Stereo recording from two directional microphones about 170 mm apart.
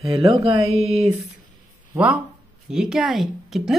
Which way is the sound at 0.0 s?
35° right (ahead or behind).